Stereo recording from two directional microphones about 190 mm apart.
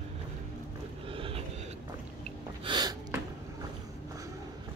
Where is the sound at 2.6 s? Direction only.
25° right (ahead or behind).